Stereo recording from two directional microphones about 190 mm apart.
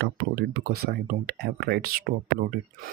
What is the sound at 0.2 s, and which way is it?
Speech, 60° right (ahead or behind).